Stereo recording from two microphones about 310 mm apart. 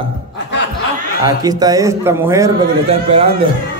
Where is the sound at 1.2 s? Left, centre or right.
Centre.